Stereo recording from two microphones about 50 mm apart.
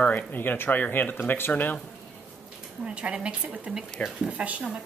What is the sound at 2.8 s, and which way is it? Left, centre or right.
A woman's voice, right.